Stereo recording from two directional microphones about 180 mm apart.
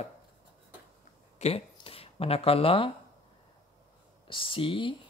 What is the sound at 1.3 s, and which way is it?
Speech, 35° left (ahead or behind).